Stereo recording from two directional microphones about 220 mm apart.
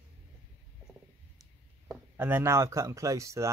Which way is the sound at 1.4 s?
5° right (ahead or behind).